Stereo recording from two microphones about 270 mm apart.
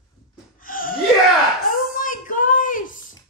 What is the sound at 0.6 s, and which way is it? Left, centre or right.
Gasp, left.